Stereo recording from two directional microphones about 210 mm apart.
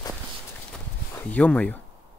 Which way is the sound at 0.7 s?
5° left (ahead or behind).